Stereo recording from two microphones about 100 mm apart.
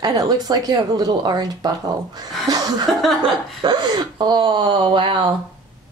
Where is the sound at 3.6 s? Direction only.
50° right (ahead or behind).